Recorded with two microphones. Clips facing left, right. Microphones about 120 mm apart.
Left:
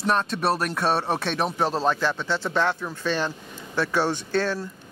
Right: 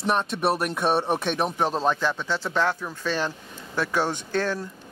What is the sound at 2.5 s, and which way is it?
Speech, centre (ahead or behind).